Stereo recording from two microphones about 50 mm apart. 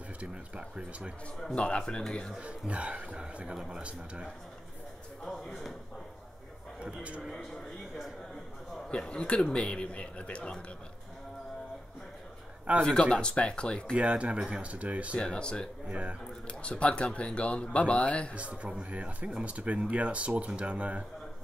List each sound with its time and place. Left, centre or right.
0.2 s speech: right
1.5 s speech: left
2.4 s speech: right
5.2 s speech: centre
6.8 s speech: right
8.9 s speech: centre
13.0 s speech: left
13.9 s speech: right
15.1 s speech: centre
15.9 s speech: right
16.4 s speech: left
18.3 s speech: right